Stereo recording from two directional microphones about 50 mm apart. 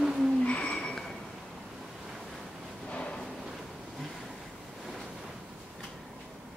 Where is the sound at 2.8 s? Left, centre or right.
Centre.